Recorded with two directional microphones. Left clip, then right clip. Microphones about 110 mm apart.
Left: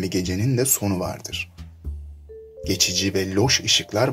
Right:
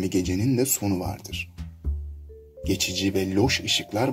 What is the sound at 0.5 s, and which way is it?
Speech, 20° right (ahead or behind).